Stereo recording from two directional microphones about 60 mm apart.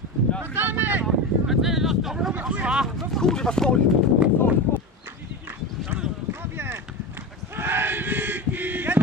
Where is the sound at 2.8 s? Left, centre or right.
Centre.